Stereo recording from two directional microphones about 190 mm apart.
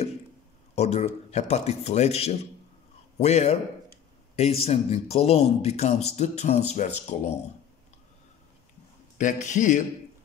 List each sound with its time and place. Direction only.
0.7 s speech: 35° left (ahead or behind)
9.2 s speech: 40° left (ahead or behind)